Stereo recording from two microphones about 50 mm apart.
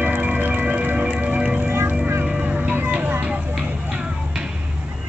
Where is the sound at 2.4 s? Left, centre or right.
Right.